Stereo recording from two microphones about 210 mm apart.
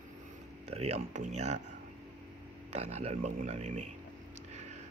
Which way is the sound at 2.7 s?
30° right (ahead or behind).